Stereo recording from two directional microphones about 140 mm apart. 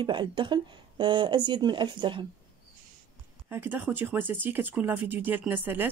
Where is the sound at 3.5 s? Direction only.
15° right (ahead or behind).